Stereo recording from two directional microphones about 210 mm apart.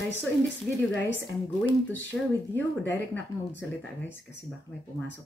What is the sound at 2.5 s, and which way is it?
Speech, 10° left (ahead or behind).